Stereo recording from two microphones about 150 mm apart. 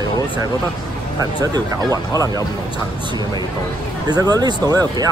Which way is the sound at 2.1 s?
20° left (ahead or behind).